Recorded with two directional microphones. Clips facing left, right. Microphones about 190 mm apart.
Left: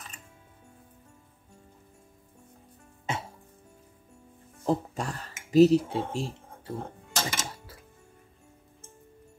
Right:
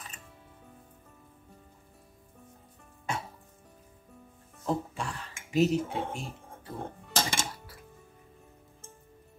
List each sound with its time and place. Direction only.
4.6 s speech: 40° left (ahead or behind)
7.1 s music: 30° right (ahead or behind)